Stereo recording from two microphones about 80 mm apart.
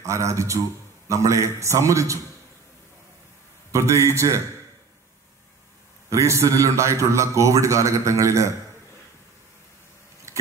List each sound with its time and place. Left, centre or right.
0.0 s a man's voice: right
3.7 s a man's voice: right
6.0 s a man's voice: right
10.3 s biting: right